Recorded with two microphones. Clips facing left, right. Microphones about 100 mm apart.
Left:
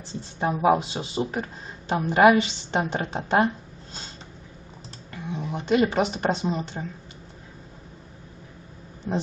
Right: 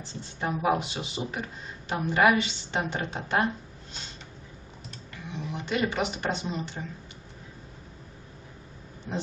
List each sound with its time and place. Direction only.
0.4 s speech: 30° left (ahead or behind)
5.1 s speech: 40° left (ahead or behind)